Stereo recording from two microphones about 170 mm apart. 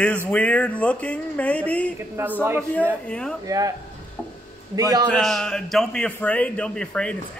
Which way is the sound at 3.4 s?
20° right (ahead or behind).